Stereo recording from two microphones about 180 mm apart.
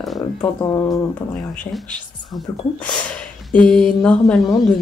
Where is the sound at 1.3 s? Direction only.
5° left (ahead or behind).